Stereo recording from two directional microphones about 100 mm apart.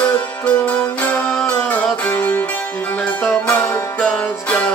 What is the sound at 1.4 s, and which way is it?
Music, 15° left (ahead or behind).